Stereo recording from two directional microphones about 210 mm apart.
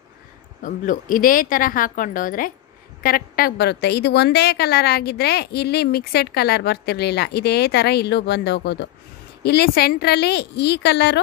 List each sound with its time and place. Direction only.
0.6 s a woman's voice: 40° left (ahead or behind)